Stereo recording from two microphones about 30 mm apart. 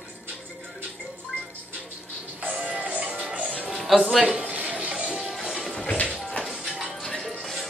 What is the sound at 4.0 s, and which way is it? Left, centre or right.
Speech, right.